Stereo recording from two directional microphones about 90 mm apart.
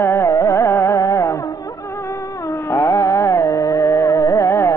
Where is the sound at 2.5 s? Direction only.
35° left (ahead or behind).